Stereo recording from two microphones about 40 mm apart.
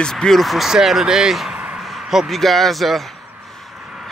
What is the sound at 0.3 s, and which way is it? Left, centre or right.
Speech, centre.